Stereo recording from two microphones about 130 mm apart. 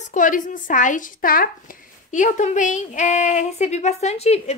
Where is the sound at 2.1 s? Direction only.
70° left (ahead or behind).